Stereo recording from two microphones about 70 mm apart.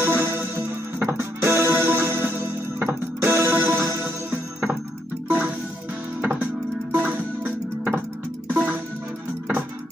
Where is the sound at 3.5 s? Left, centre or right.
Right.